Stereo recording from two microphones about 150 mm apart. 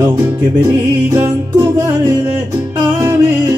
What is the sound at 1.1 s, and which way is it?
Music, 20° right (ahead or behind).